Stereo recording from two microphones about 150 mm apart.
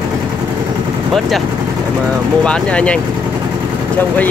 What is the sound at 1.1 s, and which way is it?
Speech, centre (ahead or behind).